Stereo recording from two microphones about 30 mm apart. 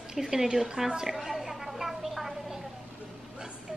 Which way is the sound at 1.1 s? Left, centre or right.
Centre.